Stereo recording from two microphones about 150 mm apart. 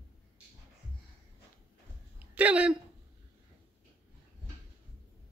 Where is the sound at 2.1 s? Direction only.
10° right (ahead or behind).